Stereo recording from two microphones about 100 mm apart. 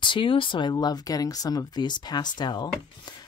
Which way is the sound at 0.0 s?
55° left (ahead or behind).